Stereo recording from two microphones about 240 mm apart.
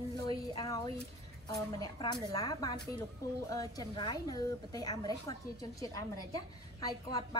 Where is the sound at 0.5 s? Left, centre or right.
Centre.